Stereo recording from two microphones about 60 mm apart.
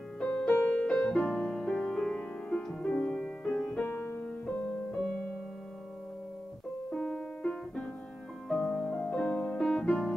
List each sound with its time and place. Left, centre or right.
0.2 s music: centre
4.0 s music: left
4.9 s music: centre
6.9 s music: centre
9.6 s music: centre
9.8 s music: centre